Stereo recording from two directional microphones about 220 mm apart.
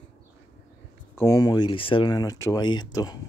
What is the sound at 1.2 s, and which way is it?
Speech, 15° left (ahead or behind).